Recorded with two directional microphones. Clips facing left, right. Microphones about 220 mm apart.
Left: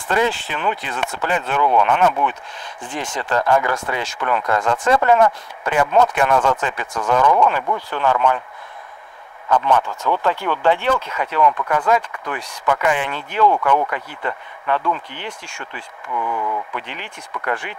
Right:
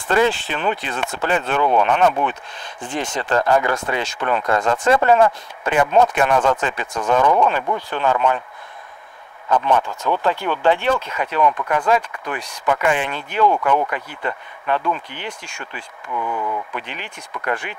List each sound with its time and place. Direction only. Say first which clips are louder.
0.1 s speech: right 2 dB; 25° right (ahead or behind)
9.8 s speech: even; 15° right (ahead or behind)